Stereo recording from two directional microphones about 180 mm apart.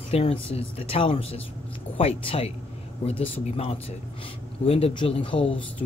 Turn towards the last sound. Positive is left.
turn(degrees=30)  # may be behind; listen again after turning